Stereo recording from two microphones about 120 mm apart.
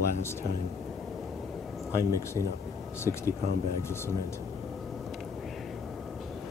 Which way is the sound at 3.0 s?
25° left (ahead or behind).